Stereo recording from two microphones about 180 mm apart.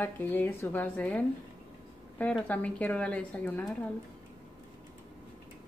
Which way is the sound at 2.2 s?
10° left (ahead or behind).